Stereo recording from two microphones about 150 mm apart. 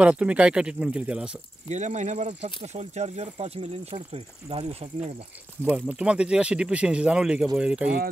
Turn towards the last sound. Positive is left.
turn(degrees=-5)  # may be behind; listen again after turning